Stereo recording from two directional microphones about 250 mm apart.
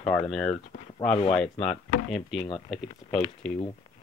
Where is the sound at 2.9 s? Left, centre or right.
Left.